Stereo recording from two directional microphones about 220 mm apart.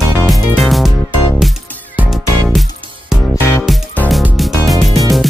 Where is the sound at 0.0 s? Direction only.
Centre (ahead or behind).